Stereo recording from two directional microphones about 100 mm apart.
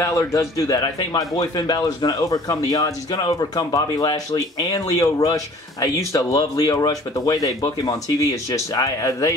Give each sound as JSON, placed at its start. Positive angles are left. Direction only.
{"t": 0.0, "sound": "speech", "side_deg": 30}